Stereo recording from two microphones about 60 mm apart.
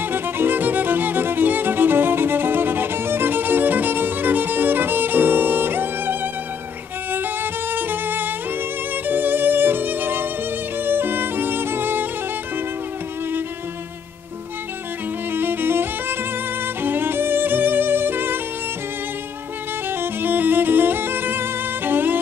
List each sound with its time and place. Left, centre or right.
0.0 s music: right
7.7 s music: right
15.3 s music: right
19.9 s music: right